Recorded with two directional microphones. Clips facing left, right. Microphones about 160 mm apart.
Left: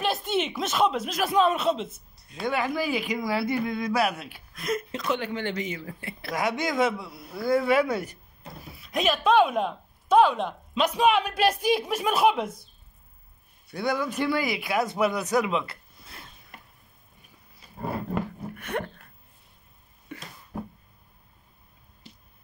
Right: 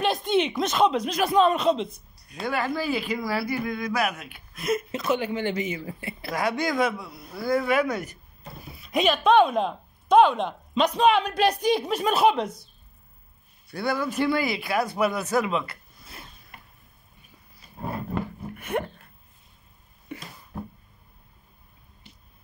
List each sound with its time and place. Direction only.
0.0 s a sound: 5° left (ahead or behind)
0.6 s speech: 5° left (ahead or behind)
2.4 s speech: 15° left (ahead or behind)
4.6 s a woman's voice: 5° right (ahead or behind)
6.3 s speech: 20° left (ahead or behind)
7.2 s speech: centre (ahead or behind)
7.4 s speech: 25° left (ahead or behind)
8.7 s speech: centre (ahead or behind)
13.7 s a man's voice: 15° left (ahead or behind)
14.0 s a woman's voice: 10° right (ahead or behind)
14.3 s speech: 15° left (ahead or behind)
18.6 s a sound: 10° right (ahead or behind)